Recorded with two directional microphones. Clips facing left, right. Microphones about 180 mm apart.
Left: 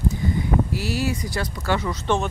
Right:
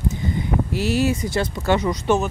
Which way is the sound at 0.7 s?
20° right (ahead or behind).